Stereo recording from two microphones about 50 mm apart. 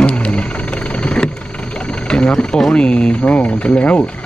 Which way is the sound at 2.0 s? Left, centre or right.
Centre.